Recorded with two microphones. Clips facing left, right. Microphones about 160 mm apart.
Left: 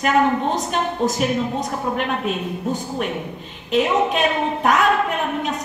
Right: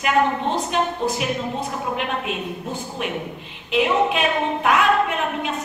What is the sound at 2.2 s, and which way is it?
Speech, 40° left (ahead or behind).